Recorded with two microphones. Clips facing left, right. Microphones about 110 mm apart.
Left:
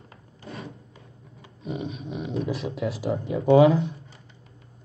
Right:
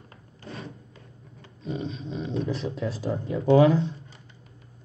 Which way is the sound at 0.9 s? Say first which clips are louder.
Even; 15° left (ahead or behind).